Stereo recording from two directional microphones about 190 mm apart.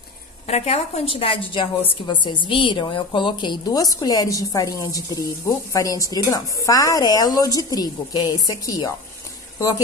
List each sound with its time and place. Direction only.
0.5 s a woman's voice: 35° left (ahead or behind); by 8.9 s 20° left (ahead or behind)